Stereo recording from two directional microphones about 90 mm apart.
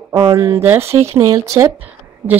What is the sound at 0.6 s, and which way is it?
Speech, 25° right (ahead or behind).